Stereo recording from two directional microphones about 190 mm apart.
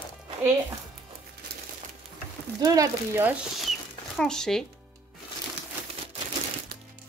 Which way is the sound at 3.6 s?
Centre (ahead or behind).